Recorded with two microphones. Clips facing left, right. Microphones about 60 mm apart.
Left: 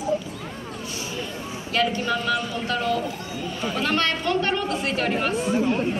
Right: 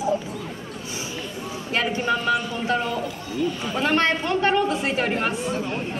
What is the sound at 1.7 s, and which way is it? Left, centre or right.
Speech, right.